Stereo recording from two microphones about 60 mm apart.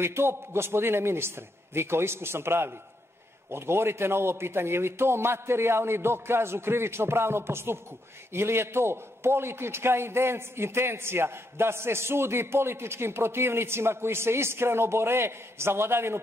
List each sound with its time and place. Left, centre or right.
0.0 s a man's voice: right